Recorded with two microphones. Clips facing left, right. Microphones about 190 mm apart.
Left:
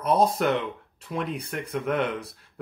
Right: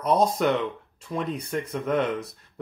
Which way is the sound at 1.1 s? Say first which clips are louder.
Right 2 dB; 10° left (ahead or behind).